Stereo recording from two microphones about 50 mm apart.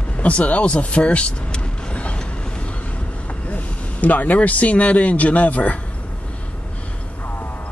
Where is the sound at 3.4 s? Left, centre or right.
Left.